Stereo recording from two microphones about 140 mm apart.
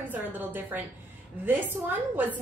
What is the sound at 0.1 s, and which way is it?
A woman's voice, 10° right (ahead or behind).